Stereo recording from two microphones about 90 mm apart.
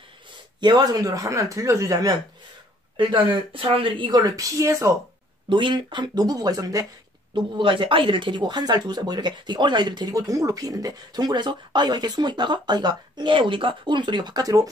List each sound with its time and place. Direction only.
0.6 s speech: 50° right (ahead or behind)
3.0 s speech: 70° right (ahead or behind)
4.1 s speech: 40° right (ahead or behind)
5.5 s speech: 60° right (ahead or behind); by 6.9 s 45° right (ahead or behind)
7.3 s speech: 65° right (ahead or behind); by 14.7 s 40° right (ahead or behind)